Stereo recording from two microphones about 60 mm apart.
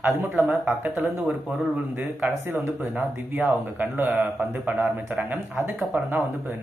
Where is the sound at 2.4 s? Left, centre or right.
Right.